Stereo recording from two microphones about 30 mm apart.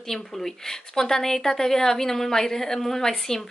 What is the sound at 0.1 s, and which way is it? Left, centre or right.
A woman's voice, centre.